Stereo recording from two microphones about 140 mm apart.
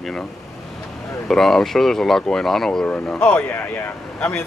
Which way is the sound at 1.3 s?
Centre (ahead or behind).